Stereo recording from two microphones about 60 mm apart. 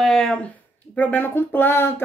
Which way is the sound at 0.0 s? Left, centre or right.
Centre.